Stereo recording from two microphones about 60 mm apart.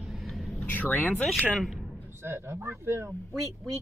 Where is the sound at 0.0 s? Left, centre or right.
Centre.